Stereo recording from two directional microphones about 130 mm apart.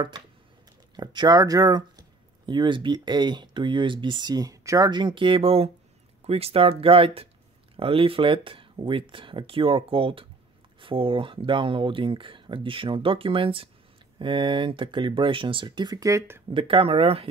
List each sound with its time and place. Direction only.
0.9 s speech: 35° right (ahead or behind)
16.4 s speech: 40° right (ahead or behind)